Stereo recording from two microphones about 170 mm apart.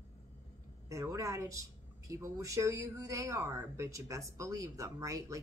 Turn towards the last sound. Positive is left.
turn(degrees=-20)  # may be behind; listen again after turning